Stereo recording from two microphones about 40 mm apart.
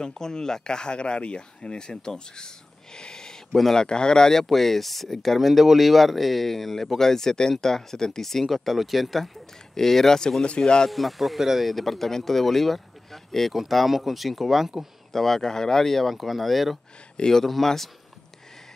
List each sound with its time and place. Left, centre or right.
0.0 s speech: centre
10.9 s speech: centre
13.5 s speech: centre
17.2 s speech: centre